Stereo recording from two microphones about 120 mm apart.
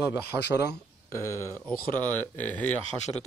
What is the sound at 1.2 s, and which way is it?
Speech, 25° left (ahead or behind).